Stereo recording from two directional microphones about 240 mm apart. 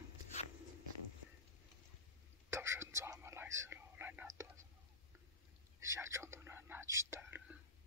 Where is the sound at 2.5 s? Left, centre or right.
Centre.